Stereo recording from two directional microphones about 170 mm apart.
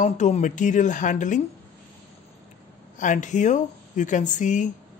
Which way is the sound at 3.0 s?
45° left (ahead or behind).